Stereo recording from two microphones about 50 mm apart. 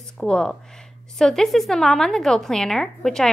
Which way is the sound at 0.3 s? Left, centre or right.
Centre.